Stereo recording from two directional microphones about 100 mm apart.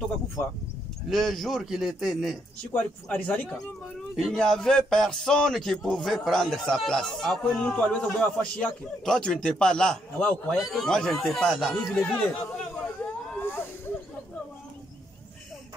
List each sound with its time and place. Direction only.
1.1 s music: centre (ahead or behind)
2.7 s speech: 15° left (ahead or behind)
4.2 s music: 5° left (ahead or behind)
10.5 s music: centre (ahead or behind)
12.7 s hubbub: 10° left (ahead or behind)
13.4 s snake: 20° left (ahead or behind)